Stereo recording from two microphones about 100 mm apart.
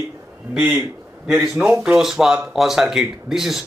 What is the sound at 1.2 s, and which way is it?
Speech, 5° right (ahead or behind).